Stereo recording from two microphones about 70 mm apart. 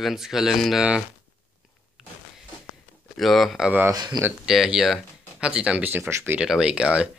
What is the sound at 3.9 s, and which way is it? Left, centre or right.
Speech, right.